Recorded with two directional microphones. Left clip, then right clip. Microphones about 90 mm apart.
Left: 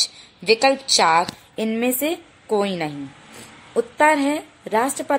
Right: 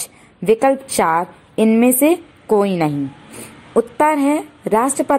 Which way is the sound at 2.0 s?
15° right (ahead or behind).